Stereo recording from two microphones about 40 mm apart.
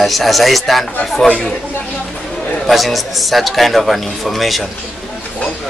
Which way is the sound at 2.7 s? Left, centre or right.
Centre.